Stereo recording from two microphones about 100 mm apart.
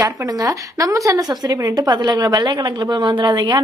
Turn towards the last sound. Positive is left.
turn(degrees=-45)  # may be behind; listen again after turning